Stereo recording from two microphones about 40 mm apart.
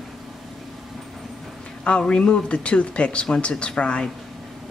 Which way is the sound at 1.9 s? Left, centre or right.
Left.